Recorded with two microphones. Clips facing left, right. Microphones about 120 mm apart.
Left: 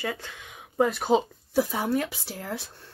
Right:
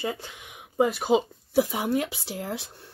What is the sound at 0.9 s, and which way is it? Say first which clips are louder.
Speech: even; 5° right (ahead or behind).